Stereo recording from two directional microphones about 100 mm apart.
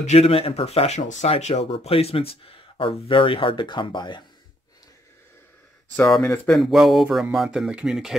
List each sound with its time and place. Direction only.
0.1 s speech: 80° left; by 4.2 s 50° left (ahead or behind)
6.2 s speech: 15° left (ahead or behind)
6.5 s speech: centre (ahead or behind)